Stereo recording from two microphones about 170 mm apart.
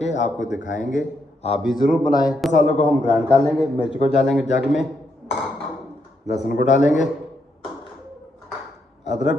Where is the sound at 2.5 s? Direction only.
40° left (ahead or behind).